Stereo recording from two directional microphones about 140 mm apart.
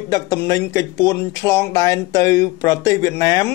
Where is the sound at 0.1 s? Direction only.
25° left (ahead or behind).